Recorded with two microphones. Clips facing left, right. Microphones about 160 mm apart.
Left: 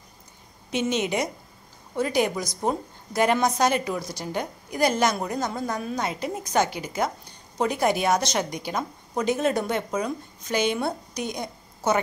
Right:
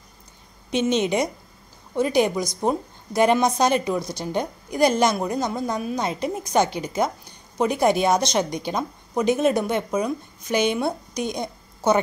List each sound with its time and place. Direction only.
0.7 s a woman's voice: 20° right (ahead or behind)